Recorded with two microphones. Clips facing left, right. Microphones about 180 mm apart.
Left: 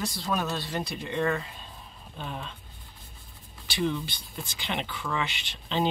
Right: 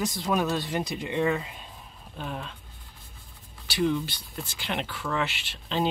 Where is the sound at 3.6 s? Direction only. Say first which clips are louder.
Right 3 dB; 10° right (ahead or behind).